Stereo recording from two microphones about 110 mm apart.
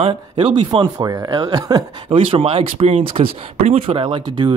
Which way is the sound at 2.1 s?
60° right (ahead or behind).